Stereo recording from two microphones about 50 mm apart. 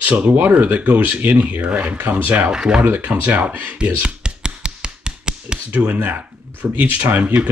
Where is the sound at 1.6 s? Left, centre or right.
Right.